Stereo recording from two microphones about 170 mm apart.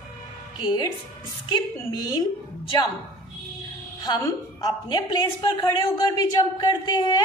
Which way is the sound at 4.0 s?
25° left (ahead or behind).